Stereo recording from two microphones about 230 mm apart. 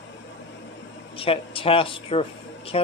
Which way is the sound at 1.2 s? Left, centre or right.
Left.